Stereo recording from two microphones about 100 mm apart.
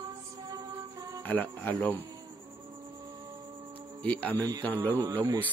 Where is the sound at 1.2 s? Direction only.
20° left (ahead or behind).